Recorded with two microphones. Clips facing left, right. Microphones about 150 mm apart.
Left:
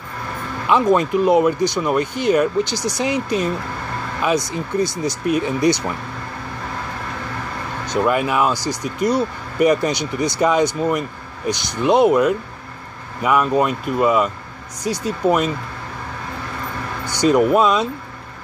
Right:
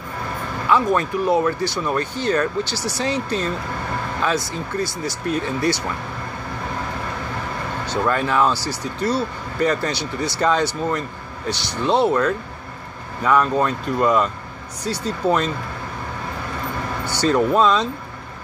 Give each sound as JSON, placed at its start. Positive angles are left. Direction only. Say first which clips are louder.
{"t": 0.7, "sound": "speech", "louder": "left 3 dB", "side_deg": 20}
{"t": 7.8, "sound": "speech", "louder": "left 3 dB", "side_deg": 15}
{"t": 17.0, "sound": "speech", "louder": "left 4 dB", "side_deg": 15}